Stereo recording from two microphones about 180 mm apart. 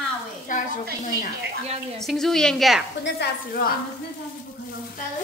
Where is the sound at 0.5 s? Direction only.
50° left (ahead or behind).